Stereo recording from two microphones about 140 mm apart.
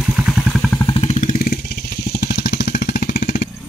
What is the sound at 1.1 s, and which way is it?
Vehicle, 85° left.